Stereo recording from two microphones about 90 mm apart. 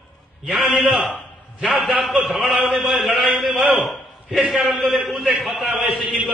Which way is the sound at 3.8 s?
Centre (ahead or behind).